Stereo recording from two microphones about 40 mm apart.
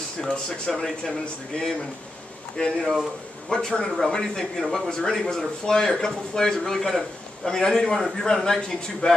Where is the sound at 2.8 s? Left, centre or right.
Centre.